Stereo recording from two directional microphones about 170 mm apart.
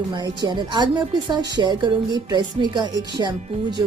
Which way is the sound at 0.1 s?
25° right (ahead or behind).